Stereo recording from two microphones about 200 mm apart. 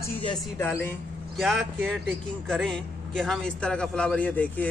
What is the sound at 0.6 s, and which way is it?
Speech, 10° left (ahead or behind).